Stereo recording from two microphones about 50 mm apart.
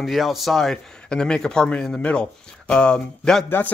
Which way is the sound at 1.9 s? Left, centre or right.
Left.